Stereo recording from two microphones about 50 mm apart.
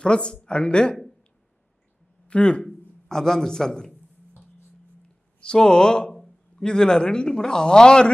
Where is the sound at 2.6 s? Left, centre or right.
Centre.